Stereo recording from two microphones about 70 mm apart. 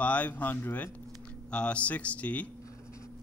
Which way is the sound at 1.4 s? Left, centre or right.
Centre.